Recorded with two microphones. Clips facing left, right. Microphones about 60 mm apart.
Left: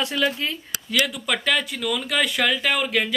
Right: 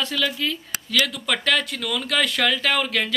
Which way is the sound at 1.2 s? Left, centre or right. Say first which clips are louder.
Right 1 dB; centre.